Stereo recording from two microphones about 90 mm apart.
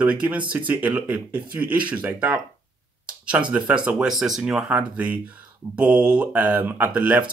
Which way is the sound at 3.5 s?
15° right (ahead or behind).